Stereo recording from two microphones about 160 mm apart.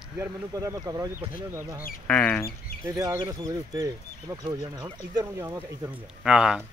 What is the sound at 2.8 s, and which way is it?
Speech, 20° right (ahead or behind).